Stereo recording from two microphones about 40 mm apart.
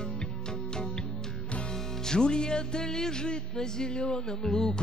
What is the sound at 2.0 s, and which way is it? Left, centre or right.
Music, centre.